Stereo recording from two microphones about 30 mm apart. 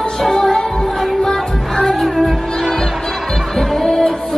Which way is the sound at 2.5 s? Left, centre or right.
Centre.